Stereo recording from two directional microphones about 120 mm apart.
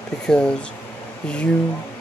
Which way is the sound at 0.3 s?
5° left (ahead or behind).